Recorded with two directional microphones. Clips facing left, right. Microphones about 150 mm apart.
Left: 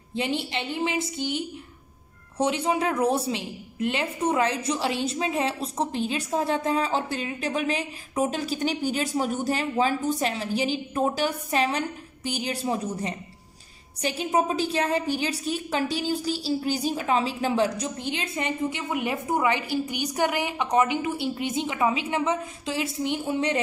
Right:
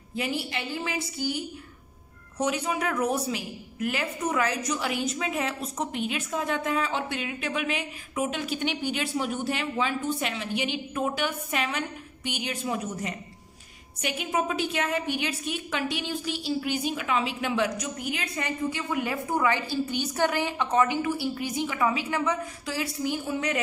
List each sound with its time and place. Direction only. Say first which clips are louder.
0.1 s a woman's voice: left 3 dB; 25° left (ahead or behind)